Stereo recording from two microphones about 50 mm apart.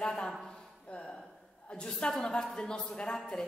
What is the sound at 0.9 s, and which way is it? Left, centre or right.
A woman's voice, left.